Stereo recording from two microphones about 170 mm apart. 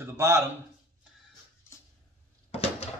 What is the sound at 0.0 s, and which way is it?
Speech, 15° right (ahead or behind).